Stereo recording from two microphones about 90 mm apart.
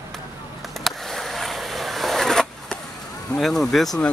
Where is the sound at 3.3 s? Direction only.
5° left (ahead or behind).